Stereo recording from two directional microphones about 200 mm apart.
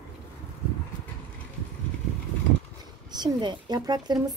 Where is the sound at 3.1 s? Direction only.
20° right (ahead or behind).